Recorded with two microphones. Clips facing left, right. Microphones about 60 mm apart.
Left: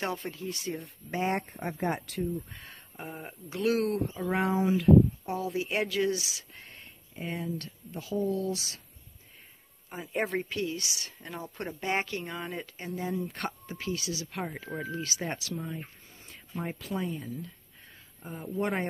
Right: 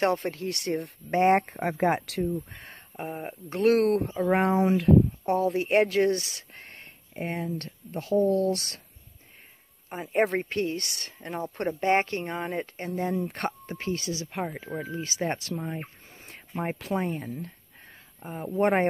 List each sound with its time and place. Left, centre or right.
0.0 s speech: right
2.6 s a sound: right
3.4 s speech: right
9.9 s speech: right
14.6 s speech: centre
15.2 s speech: right
16.9 s speech: right
18.2 s speech: right
18.6 s speech: right